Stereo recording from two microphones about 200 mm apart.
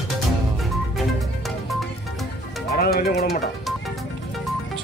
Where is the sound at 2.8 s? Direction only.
50° left (ahead or behind).